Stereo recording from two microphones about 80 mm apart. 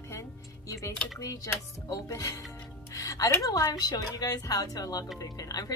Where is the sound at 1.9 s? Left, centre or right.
Left.